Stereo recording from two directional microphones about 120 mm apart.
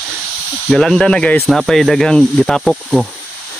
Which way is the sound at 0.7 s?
5° left (ahead or behind).